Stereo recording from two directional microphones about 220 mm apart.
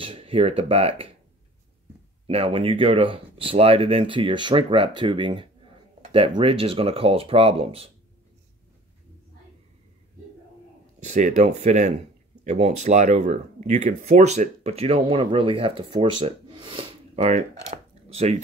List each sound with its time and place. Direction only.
0.0 s speech: 25° right (ahead or behind)
2.2 s speech: 25° right (ahead or behind)
11.0 s speech: 35° right (ahead or behind)